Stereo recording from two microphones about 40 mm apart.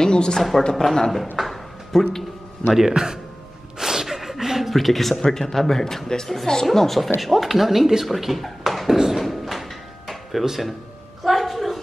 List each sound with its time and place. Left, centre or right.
0.0 s a woman's voice: centre
0.4 s a woman's voice: centre
1.4 s a sound: centre
2.9 s speech: centre
3.8 s a sound: centre
5.2 s a woman's voice: centre
9.2 s drawer open or close: centre
10.4 s speech: centre
11.2 s a sound: centre